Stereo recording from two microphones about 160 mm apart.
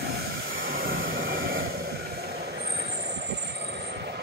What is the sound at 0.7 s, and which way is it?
Vehicle, 65° right (ahead or behind).